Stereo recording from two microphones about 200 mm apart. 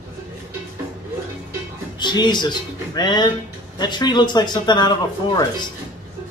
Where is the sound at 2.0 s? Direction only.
20° left (ahead or behind).